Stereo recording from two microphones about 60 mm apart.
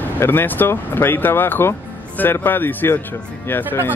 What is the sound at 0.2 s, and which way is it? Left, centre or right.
Speech, left.